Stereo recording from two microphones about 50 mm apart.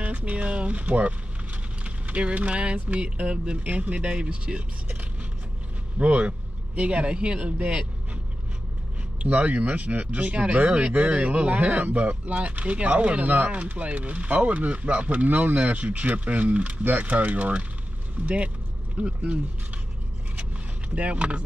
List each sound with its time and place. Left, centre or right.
0.0 s speech: right
5.9 s speech: right
9.2 s speech: right
20.9 s speech: right